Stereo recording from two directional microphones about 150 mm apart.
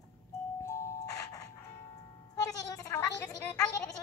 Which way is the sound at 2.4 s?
25° left (ahead or behind).